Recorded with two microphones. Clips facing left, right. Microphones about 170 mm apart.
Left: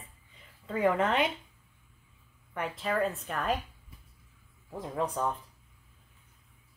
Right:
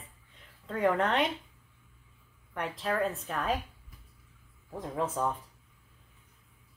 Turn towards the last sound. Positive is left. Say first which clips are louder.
# even
turn(degrees=0)  # may be behind; listen again after turning